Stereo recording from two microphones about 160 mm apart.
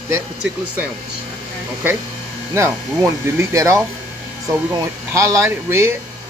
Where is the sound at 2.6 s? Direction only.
15° right (ahead or behind).